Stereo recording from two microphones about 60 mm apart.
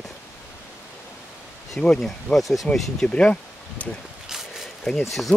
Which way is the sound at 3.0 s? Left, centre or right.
Centre.